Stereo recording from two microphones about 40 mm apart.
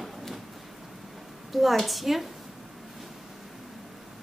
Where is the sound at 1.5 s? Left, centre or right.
Centre.